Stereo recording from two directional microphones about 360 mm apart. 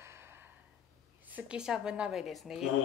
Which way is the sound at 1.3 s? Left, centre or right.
Centre.